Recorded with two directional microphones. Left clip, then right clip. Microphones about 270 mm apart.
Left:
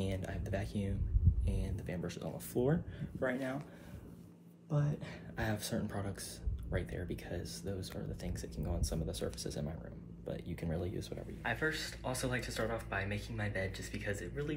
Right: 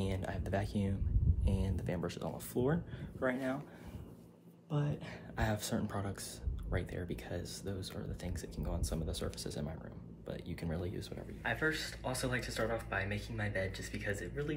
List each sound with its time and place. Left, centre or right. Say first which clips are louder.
0.0 s a sound: right 1 dB; centre
1.4 s speech: right 8 dB; right; by 3.5 s centre
4.6 s speech: even; centre
11.4 s speech: right 1 dB; centre